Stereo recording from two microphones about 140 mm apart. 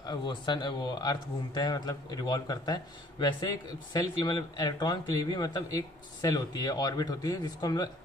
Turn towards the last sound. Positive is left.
turn(degrees=30)  # may be behind; listen again after turning